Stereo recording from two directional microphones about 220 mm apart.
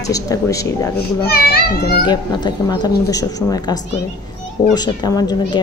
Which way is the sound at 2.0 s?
20° left (ahead or behind).